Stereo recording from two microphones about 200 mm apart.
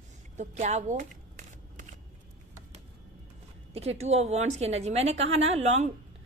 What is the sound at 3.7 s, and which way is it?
A woman's voice, 30° right (ahead or behind).